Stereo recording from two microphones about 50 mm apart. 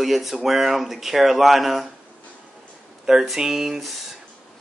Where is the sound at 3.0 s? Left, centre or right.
Centre.